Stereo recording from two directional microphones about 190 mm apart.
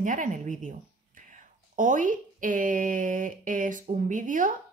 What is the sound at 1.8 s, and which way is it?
Speech, 45° right (ahead or behind).